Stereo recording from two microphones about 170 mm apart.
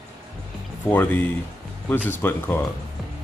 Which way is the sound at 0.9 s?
10° left (ahead or behind).